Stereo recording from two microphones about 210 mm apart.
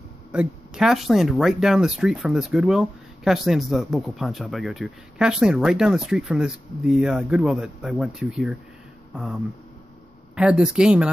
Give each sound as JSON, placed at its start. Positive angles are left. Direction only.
{"t": 0.3, "sound": "speech", "side_deg": -5}